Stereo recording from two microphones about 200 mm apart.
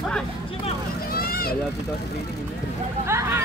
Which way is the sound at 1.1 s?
50° left (ahead or behind).